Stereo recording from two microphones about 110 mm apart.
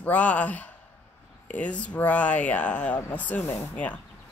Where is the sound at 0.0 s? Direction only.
15° left (ahead or behind).